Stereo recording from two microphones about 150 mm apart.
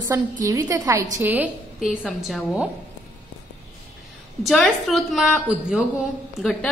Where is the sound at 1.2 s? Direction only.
10° right (ahead or behind).